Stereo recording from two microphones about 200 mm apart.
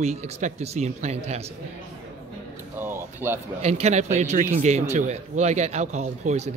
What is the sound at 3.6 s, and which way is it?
Speech, 30° right (ahead or behind).